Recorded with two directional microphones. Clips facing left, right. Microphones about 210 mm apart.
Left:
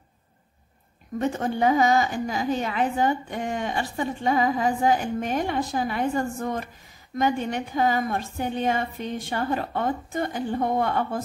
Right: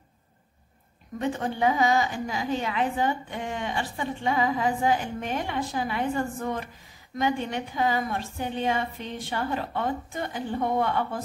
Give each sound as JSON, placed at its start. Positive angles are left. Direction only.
{"t": 1.2, "sound": "a woman's voice", "side_deg": 45}